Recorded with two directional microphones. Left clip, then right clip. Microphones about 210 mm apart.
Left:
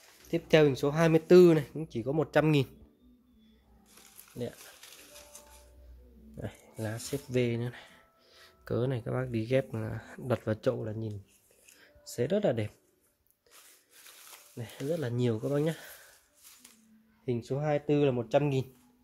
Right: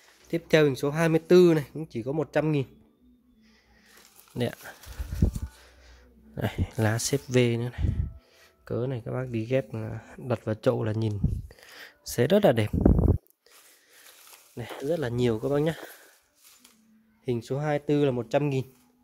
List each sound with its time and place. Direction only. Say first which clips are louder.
0.3 s speech: right 2 dB; 20° right (ahead or behind); by 2.7 s 5° right (ahead or behind)
4.7 s speech: right 10 dB; 45° right (ahead or behind)
6.3 s speech: right 11 dB; 40° right (ahead or behind); by 10.7 s 15° right (ahead or behind)
10.7 s speech: right 6 dB; 40° right (ahead or behind)
14.5 s speech: right 5 dB; 35° right (ahead or behind)
17.2 s speech: right 3 dB; 35° right (ahead or behind)